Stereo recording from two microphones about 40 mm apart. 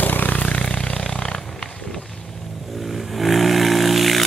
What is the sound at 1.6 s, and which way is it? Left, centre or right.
Run, left.